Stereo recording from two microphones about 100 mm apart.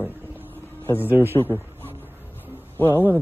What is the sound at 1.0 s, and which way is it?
Speech, 20° right (ahead or behind).